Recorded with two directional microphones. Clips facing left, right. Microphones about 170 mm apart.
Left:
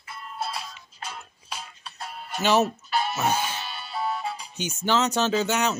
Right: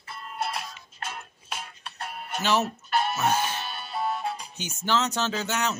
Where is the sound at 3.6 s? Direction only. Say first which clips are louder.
Right 1 dB; 50° right (ahead or behind).